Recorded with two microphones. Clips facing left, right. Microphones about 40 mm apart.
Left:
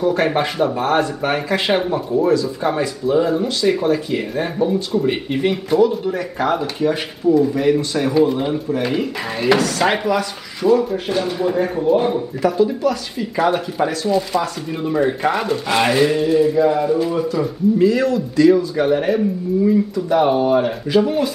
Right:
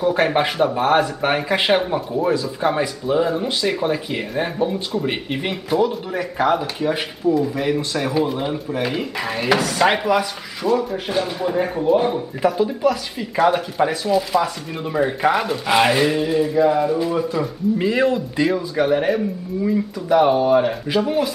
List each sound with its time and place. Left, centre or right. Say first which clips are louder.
0.0 s speech: even; centre
2.0 s speech: left 4 dB; centre
17.7 s speech: left 2 dB; right
18.5 s speech: left 4 dB; centre